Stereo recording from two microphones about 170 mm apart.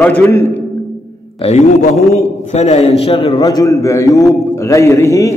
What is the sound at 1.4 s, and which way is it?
A man's voice, 40° left (ahead or behind).